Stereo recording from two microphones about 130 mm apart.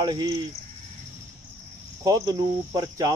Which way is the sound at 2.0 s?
25° right (ahead or behind).